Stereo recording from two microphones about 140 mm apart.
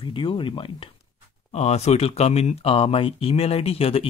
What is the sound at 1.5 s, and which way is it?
Speech, 50° left (ahead or behind).